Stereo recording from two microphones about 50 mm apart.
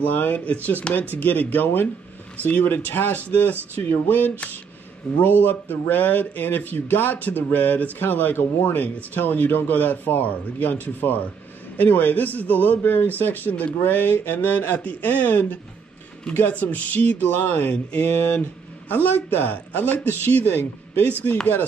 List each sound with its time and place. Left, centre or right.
0.0 s speech: left
8.8 s speech: left